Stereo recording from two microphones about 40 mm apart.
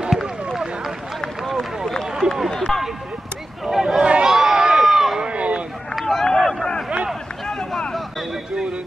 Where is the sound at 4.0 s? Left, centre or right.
Right.